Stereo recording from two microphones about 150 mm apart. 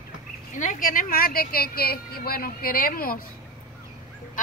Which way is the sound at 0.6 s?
60° left (ahead or behind).